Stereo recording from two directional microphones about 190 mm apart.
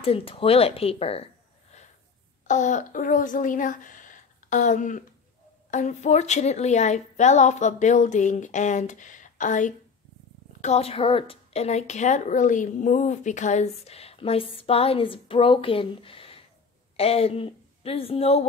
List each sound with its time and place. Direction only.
0.0 s a woman's voice: 30° left (ahead or behind)